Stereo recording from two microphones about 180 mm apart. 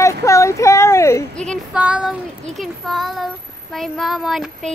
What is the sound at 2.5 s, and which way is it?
Speech, centre (ahead or behind).